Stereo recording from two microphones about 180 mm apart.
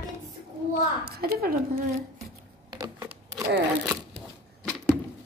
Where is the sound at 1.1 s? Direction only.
60° right (ahead or behind).